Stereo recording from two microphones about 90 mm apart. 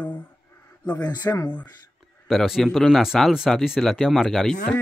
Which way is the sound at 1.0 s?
45° left (ahead or behind).